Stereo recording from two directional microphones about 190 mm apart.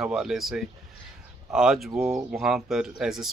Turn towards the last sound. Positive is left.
turn(degrees=-5)  # may be behind; listen again after turning